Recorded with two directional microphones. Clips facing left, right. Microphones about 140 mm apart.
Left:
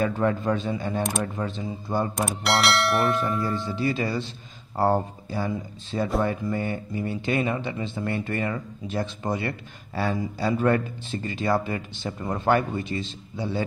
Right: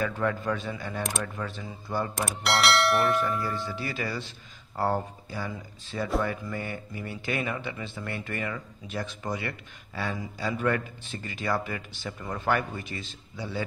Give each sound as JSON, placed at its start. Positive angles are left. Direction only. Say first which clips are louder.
{"t": 0.0, "sound": "speech", "louder": "left 5 dB", "side_deg": 25}
{"t": 2.4, "sound": "speech", "louder": "left 1 dB", "side_deg": 0}
{"t": 3.1, "sound": "speech", "louder": "left 2 dB", "side_deg": 25}